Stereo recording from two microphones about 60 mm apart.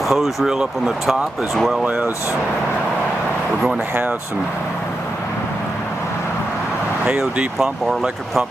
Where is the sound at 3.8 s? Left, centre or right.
Right.